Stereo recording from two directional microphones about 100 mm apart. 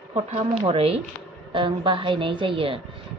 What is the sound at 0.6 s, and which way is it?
Speech, 75° right (ahead or behind).